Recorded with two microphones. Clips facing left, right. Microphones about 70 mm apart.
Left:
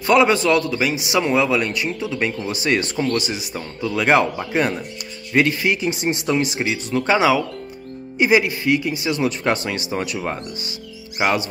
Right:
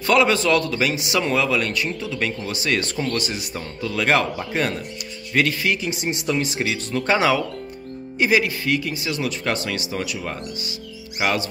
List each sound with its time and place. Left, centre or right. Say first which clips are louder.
0.0 s a man's voice: left 2 dB; left
3.0 s a man's voice: left 3 dB; centre
8.2 s a man's voice: left 3 dB; centre